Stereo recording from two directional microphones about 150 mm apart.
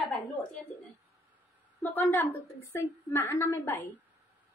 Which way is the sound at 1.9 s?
15° left (ahead or behind).